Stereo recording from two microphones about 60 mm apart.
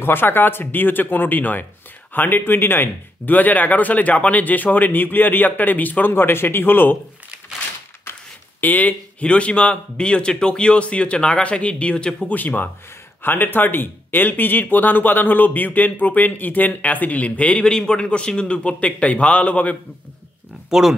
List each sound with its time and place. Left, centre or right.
0.0 s speech: left
8.5 s speech: left
12.3 s speech: left
20.7 s speech: centre